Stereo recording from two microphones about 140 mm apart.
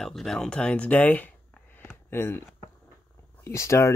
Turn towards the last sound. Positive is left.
turn(degrees=20)  # may be behind; listen again after turning